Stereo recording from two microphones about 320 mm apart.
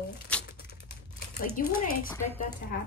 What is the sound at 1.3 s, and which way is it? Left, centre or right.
Speech, left.